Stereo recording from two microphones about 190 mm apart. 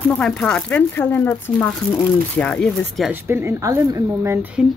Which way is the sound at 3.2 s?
15° right (ahead or behind).